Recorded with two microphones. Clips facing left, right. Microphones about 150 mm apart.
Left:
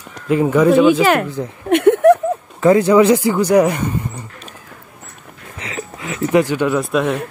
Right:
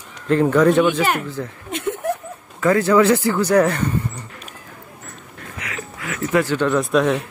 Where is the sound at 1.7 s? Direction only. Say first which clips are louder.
Left 15 dB; 70° left (ahead or behind).